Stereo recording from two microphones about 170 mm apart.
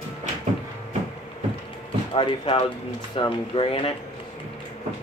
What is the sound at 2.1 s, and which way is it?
Speech, 30° left (ahead or behind).